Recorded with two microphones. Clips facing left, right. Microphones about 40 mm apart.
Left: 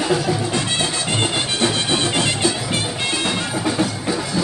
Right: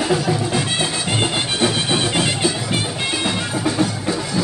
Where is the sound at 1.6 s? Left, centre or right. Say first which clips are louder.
Right 1 dB; centre.